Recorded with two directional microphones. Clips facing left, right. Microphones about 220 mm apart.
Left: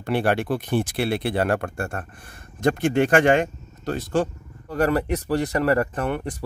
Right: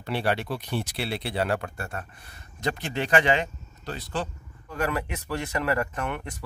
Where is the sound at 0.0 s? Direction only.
50° left (ahead or behind).